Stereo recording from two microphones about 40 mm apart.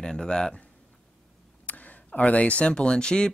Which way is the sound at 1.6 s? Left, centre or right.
Left.